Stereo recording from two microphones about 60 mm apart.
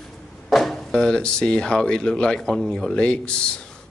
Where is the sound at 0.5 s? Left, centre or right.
Centre.